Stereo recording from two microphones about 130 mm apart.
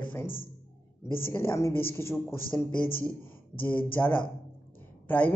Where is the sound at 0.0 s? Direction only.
15° left (ahead or behind).